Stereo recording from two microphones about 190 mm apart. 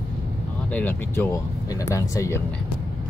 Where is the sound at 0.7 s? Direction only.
10° left (ahead or behind).